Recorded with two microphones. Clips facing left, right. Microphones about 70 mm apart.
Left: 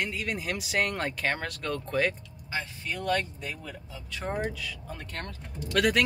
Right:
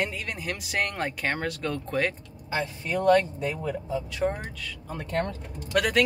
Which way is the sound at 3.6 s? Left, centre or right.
Right.